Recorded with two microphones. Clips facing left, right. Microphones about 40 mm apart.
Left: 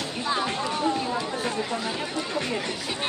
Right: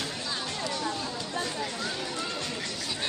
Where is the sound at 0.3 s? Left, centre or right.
Left.